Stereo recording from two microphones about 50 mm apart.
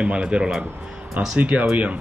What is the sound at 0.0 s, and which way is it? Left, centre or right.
Speech, right.